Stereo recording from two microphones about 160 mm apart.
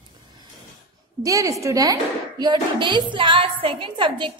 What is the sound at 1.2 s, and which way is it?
A woman's voice, 20° right (ahead or behind).